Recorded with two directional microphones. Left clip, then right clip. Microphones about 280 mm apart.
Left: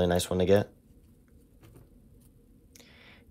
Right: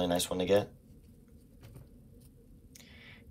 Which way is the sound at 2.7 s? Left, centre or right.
Left.